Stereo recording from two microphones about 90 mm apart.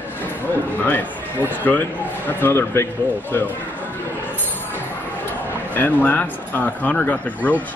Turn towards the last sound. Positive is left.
turn(degrees=15)  # may be behind; listen again after turning